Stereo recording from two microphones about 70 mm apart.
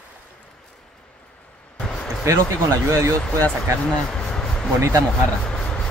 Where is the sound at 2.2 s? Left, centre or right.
Right.